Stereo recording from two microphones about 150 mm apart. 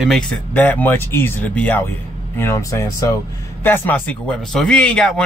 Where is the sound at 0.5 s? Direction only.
10° left (ahead or behind).